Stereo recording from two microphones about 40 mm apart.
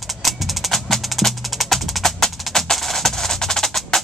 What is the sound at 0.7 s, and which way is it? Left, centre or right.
Percussion, centre.